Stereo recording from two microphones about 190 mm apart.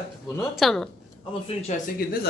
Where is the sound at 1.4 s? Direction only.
35° left (ahead or behind).